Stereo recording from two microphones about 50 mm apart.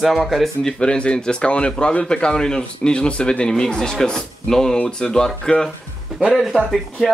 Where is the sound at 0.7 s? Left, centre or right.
Centre.